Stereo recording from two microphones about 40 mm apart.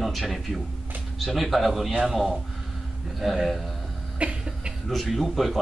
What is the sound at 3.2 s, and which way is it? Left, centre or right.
Speech, centre.